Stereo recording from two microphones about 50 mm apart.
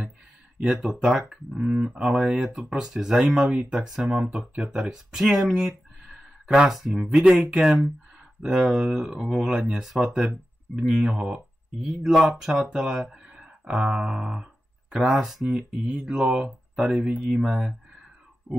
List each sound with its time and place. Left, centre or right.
0.7 s speech: centre
1.6 s speech: right
4.1 s speech: right
4.6 s speech: centre
5.5 s a sound: centre
6.7 s speech: centre
12.1 s speech: centre
13.1 s a sound: centre
13.9 s speech: centre